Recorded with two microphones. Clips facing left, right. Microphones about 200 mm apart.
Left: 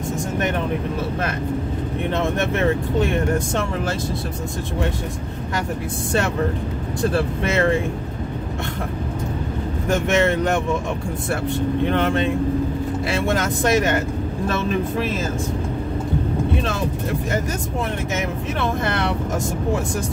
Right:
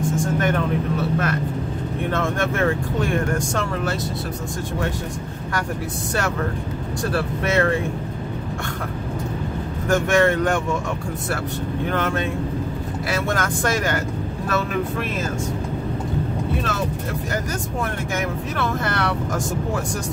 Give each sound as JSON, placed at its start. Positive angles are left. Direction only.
{"t": 2.0, "sound": "speech", "side_deg": 20}
{"t": 7.0, "sound": "speech", "side_deg": 25}
{"t": 9.8, "sound": "speech", "side_deg": 20}
{"t": 11.9, "sound": "speech", "side_deg": 25}
{"t": 18.6, "sound": "speech", "side_deg": 25}